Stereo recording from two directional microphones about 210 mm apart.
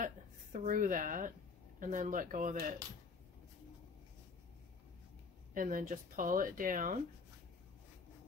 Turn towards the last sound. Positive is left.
turn(degrees=-40)  # may be behind; listen again after turning